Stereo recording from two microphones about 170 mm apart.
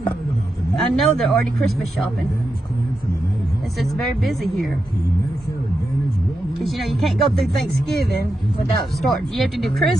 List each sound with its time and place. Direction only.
0.7 s speech: centre (ahead or behind)
3.8 s speech: centre (ahead or behind)
6.6 s speech: centre (ahead or behind)
7.3 s music: 70° right (ahead or behind)
9.0 s speech: centre (ahead or behind)